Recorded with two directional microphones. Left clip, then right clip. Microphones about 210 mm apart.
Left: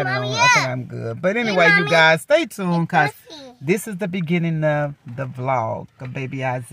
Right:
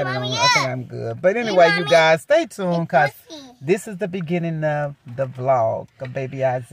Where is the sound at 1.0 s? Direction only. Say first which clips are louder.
Right 2 dB; 10° left (ahead or behind).